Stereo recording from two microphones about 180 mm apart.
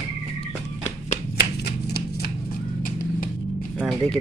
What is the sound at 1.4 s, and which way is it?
Shuffling cards, 65° left (ahead or behind).